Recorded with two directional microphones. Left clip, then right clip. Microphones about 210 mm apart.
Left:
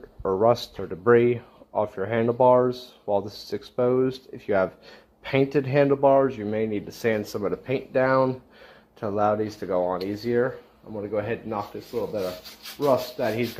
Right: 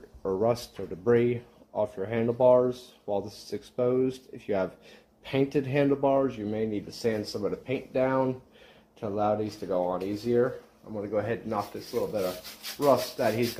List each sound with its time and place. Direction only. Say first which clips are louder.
0.2 s speech: left 6 dB; 20° left (ahead or behind)
12.7 s rub: left 1 dB; 15° left (ahead or behind)